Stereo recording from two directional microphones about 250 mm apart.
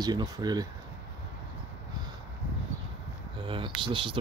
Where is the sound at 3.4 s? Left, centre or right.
Centre.